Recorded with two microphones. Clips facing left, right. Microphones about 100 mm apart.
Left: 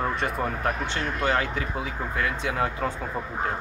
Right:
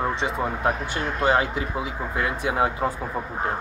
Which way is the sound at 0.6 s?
20° right (ahead or behind).